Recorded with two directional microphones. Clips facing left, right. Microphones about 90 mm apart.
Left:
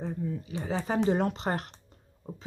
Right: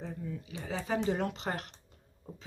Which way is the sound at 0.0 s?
35° left (ahead or behind).